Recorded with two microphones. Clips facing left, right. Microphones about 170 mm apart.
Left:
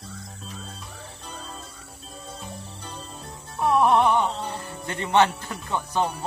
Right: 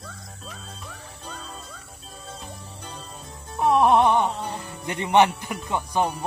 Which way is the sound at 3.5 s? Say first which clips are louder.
Right 2 dB; 15° right (ahead or behind).